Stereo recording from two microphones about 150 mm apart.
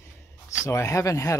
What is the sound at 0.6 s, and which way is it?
Speech, 20° left (ahead or behind).